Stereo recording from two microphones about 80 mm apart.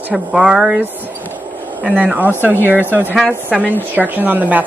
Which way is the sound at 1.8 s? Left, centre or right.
Centre.